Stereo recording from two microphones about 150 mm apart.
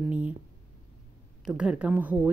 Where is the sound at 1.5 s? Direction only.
5° right (ahead or behind).